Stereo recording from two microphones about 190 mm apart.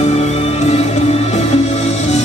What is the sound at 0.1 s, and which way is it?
Music, 35° left (ahead or behind).